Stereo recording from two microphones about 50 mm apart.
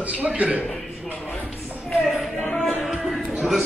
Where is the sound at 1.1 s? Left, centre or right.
Left.